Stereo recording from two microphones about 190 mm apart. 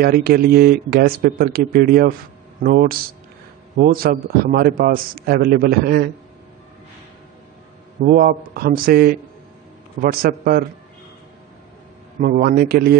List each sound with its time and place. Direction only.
0.0 s a man's voice: 55° right (ahead or behind)
8.0 s a man's voice: 45° right (ahead or behind)
10.2 s a man's voice: 50° right (ahead or behind)
12.2 s a man's voice: 50° right (ahead or behind)